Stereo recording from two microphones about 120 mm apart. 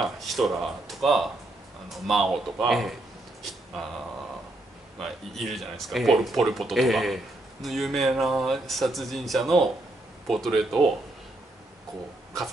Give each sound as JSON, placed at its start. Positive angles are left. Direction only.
{"t": 0.0, "sound": "speech", "side_deg": 0}
{"t": 5.0, "sound": "speech", "side_deg": 0}